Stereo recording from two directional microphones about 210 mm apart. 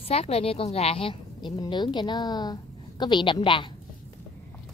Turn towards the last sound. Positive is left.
turn(degrees=20)  # may be behind; listen again after turning